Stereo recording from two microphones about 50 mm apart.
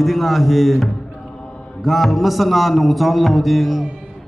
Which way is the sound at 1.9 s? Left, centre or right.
Centre.